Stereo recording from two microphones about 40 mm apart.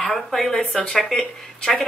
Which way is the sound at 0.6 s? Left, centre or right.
Left.